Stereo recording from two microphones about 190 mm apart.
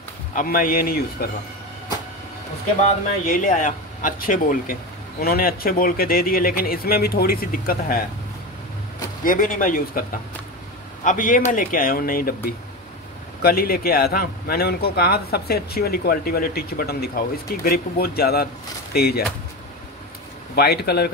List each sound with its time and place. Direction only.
0.3 s a man's voice: 45° left (ahead or behind)
3.3 s a man's voice: 45° left (ahead or behind)
9.2 s a man's voice: 45° left (ahead or behind)
11.1 s a man's voice: 45° left (ahead or behind)
13.4 s a man's voice: 50° left (ahead or behind)
20.5 s speech: 55° left (ahead or behind)